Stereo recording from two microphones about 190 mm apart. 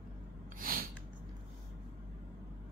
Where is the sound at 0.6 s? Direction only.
50° right (ahead or behind).